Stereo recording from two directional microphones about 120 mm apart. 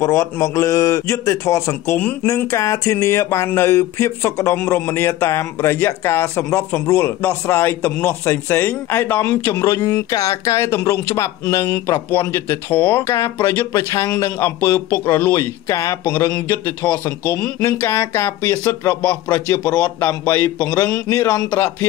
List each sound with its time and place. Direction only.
0.0 s speech: 25° left (ahead or behind)